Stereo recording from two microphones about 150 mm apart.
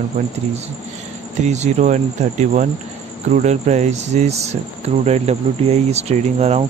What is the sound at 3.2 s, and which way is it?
Insect, 50° right (ahead or behind).